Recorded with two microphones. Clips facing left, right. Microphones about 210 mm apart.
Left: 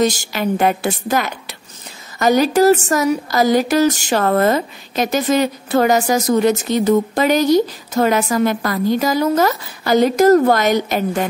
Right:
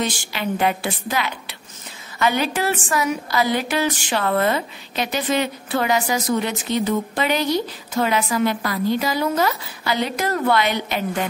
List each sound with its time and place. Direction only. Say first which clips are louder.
0.0 s a woman's voice: left 7 dB; 40° left (ahead or behind)